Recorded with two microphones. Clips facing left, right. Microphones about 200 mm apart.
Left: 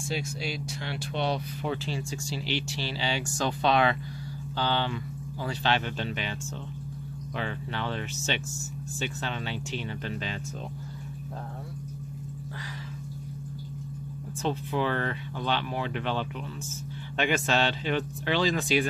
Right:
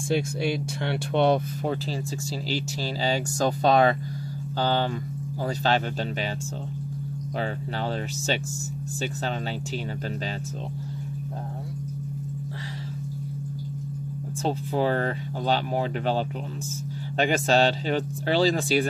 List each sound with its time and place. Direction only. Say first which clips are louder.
0.1 s speech: right 8 dB; 55° right (ahead or behind); by 5.8 s 40° right (ahead or behind)
7.3 s speech: right 3 dB; 40° right (ahead or behind)
14.4 s speech: right 3 dB; 40° right (ahead or behind)